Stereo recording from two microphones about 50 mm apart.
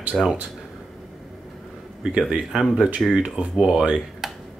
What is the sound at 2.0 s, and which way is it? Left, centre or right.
A man's voice, centre.